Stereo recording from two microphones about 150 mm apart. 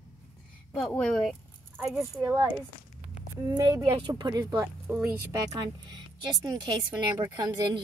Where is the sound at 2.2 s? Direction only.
20° right (ahead or behind).